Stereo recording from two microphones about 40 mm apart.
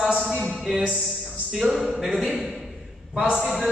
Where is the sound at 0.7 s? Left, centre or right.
Centre.